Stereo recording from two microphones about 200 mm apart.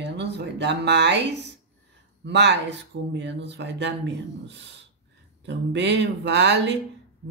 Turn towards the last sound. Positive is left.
turn(degrees=-60)  # may be behind; listen again after turning